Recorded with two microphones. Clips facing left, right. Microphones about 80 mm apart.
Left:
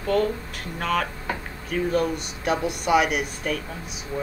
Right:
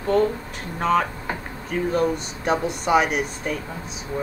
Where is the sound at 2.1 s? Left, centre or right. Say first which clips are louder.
Right 2 dB; right.